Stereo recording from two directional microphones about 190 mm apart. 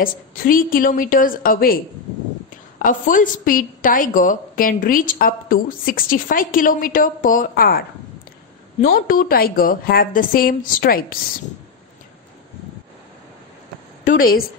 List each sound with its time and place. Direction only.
0.0 s a woman's voice: 45° left (ahead or behind)
2.8 s a woman's voice: 45° left (ahead or behind)
8.8 s a woman's voice: 50° left (ahead or behind)
14.0 s a woman's voice: 50° left (ahead or behind)